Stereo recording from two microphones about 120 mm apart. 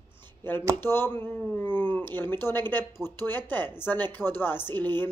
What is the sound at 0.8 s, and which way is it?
Speech, 20° left (ahead or behind).